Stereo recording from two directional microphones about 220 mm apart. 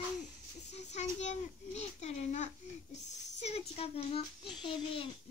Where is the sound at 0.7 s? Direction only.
30° left (ahead or behind).